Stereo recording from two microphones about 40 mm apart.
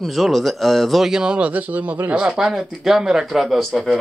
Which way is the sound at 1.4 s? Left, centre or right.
Right.